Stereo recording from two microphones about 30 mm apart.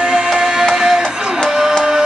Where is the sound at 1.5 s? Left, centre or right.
Centre.